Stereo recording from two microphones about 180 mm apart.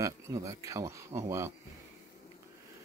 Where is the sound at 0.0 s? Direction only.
20° right (ahead or behind).